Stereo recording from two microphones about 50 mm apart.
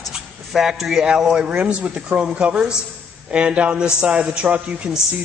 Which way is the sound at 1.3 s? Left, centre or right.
Centre.